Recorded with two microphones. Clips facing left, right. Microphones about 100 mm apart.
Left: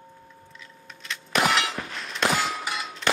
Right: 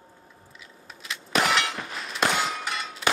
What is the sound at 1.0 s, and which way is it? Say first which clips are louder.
Clang: left 1 dB; centre (ahead or behind).